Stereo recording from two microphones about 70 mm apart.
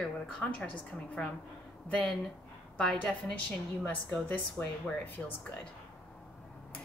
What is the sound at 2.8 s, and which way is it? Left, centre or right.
A woman's voice, centre.